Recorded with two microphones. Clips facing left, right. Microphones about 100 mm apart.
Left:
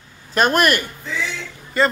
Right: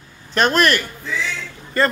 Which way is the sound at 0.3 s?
10° left (ahead or behind).